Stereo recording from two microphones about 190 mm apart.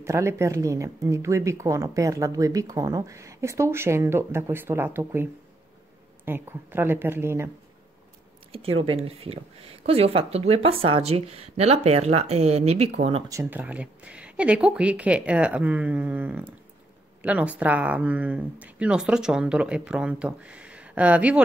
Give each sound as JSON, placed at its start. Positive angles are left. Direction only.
{"t": 0.0, "sound": "speech", "side_deg": -15}
{"t": 8.8, "sound": "speech", "side_deg": -30}
{"t": 13.3, "sound": "speech", "side_deg": -10}